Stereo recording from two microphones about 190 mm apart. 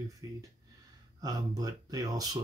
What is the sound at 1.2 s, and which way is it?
Speech, 20° right (ahead or behind).